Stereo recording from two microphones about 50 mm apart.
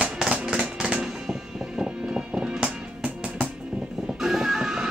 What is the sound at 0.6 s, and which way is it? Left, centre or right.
Music, centre.